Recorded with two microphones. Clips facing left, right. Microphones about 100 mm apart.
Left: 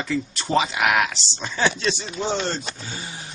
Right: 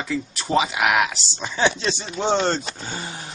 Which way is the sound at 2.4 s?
40° right (ahead or behind).